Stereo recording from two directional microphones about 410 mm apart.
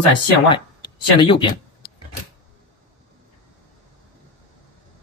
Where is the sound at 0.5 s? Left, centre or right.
Centre.